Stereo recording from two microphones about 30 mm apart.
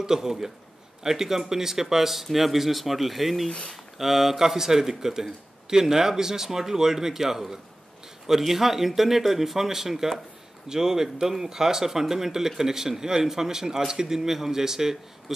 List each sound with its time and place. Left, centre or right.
0.0 s speech: centre
10.7 s speech: centre